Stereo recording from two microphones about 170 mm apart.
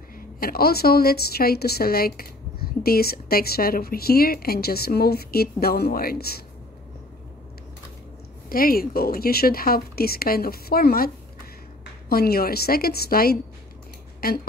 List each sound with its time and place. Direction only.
0.4 s a woman's voice: 60° left (ahead or behind)
8.5 s a woman's voice: 60° left (ahead or behind)
12.1 s a woman's voice: 65° left (ahead or behind)